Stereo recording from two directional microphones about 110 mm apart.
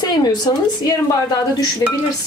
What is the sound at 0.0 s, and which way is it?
A woman's voice, 40° left (ahead or behind).